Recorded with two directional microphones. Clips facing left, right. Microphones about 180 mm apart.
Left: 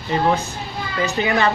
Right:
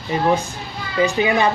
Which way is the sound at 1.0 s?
15° right (ahead or behind).